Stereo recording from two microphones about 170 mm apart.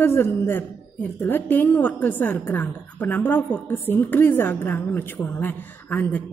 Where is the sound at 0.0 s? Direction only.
15° left (ahead or behind).